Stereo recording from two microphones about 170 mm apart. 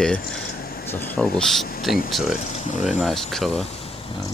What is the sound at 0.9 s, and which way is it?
Speech, 10° left (ahead or behind).